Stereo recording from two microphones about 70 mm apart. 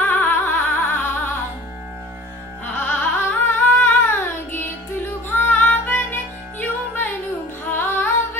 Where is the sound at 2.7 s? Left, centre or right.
Left.